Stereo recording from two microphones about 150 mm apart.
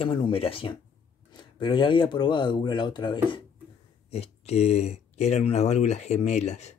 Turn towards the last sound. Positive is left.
turn(degrees=50)  # may be behind; listen again after turning